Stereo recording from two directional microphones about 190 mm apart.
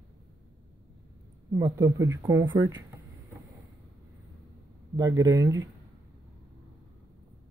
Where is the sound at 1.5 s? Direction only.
20° right (ahead or behind).